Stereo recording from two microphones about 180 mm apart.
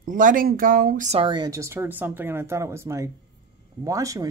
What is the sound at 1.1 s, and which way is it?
Speech, 30° right (ahead or behind).